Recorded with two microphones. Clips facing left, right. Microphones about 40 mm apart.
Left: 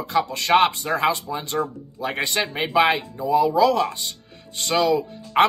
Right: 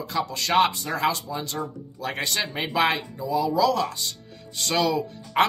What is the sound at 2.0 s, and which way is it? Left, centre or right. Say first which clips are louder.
Speech: left 4 dB; centre.